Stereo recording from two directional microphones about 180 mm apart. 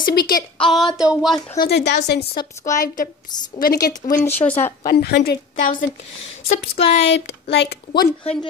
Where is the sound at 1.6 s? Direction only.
65° left (ahead or behind).